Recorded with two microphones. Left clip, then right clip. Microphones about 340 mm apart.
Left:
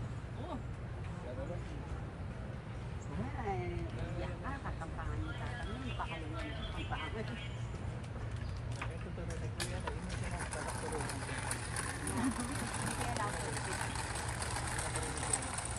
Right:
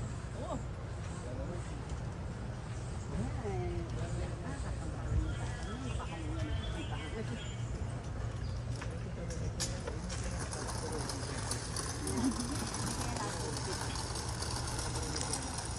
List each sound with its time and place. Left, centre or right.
10.5 s vehicle: left